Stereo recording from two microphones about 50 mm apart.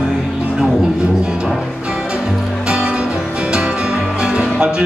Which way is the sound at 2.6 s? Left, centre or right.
Centre.